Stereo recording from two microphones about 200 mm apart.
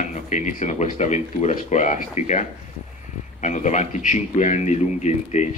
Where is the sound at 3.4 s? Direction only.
35° left (ahead or behind).